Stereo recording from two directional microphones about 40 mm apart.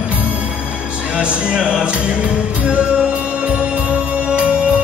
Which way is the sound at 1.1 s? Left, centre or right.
Right.